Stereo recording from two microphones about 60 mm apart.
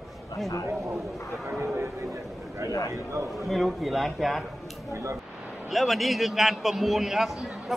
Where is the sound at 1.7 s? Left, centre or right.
Right.